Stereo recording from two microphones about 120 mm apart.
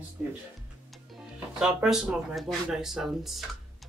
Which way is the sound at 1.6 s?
5° right (ahead or behind).